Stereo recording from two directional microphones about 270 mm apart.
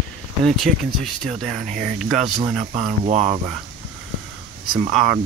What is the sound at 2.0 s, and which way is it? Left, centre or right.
Speech, centre.